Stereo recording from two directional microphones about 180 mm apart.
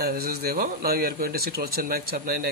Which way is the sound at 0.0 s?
55° right (ahead or behind).